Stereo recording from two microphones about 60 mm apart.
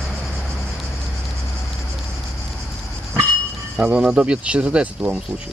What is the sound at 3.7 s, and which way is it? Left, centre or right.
Speech, centre.